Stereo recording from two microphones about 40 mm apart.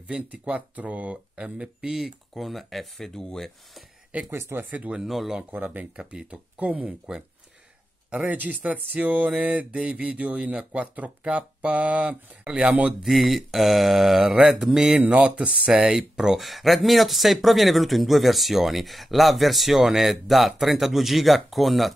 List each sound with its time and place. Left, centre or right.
0.3 s speech: right
1.8 s speech: centre
4.3 s speech: right
5.0 s speech: centre
5.6 s speech: right
5.9 s speech: right
8.3 s speech: right
13.1 s speech: centre
14.4 s mantra: centre
15.0 s speech: right
15.7 s speech: centre
16.3 s speech: centre